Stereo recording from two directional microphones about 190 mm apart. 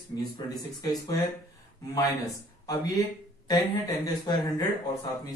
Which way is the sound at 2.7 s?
20° left (ahead or behind).